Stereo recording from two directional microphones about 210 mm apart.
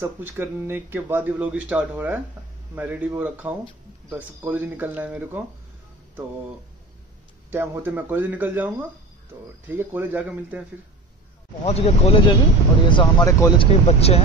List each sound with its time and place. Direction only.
0.0 s speech: 10° right (ahead or behind)
7.5 s speech: 10° right (ahead or behind)
11.6 s speech: 30° left (ahead or behind)
13.8 s speech: 30° left (ahead or behind)